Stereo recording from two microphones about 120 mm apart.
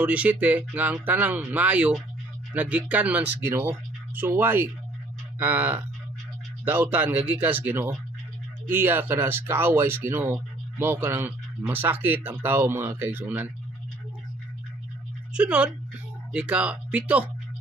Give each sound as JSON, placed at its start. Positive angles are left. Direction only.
{"t": 0.0, "sound": "speech", "side_deg": -10}
{"t": 15.3, "sound": "speech", "side_deg": -10}